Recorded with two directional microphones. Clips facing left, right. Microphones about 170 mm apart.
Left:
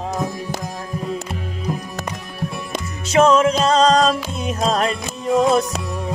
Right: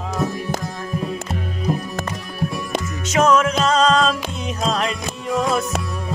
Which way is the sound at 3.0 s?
30° left (ahead or behind).